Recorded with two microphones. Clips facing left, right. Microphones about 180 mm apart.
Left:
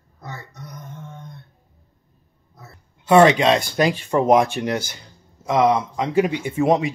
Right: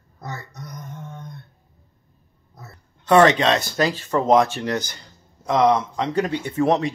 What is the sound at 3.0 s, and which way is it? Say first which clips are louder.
Speech: left 2 dB; 10° left (ahead or behind).